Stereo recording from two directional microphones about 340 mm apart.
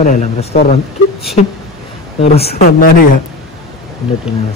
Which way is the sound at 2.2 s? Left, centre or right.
Centre.